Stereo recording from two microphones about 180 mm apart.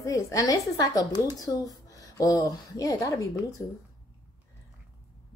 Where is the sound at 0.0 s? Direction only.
20° left (ahead or behind).